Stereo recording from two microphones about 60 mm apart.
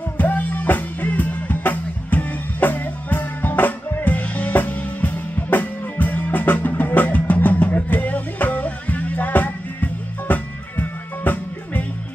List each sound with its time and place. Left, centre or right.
0.2 s music: left